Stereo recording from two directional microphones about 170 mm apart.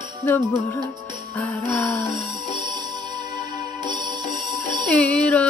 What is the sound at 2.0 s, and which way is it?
Music, centre (ahead or behind).